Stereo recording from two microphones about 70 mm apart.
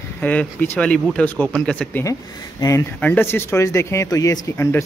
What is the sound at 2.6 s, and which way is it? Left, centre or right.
Speech, left.